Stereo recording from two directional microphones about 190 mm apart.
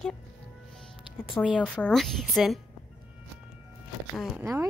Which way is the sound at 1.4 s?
5° right (ahead or behind).